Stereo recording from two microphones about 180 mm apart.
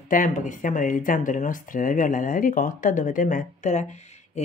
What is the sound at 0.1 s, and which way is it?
Speech, 45° left (ahead or behind).